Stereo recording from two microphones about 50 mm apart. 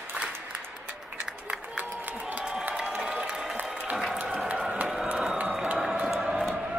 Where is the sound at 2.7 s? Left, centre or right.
Centre.